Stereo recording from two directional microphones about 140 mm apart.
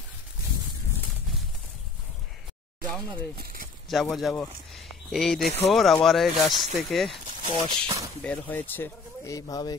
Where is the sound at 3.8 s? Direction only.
Centre (ahead or behind).